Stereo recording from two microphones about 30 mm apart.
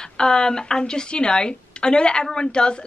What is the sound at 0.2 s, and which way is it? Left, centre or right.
A woman's voice, left.